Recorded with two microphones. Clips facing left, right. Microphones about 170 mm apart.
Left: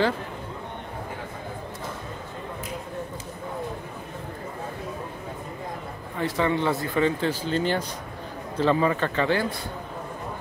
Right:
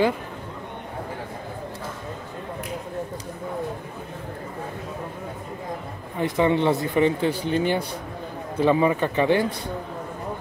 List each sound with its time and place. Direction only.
6.1 s a man's voice: 20° right (ahead or behind)